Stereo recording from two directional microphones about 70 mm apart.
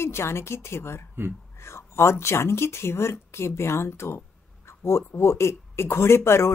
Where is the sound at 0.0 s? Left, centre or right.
Left.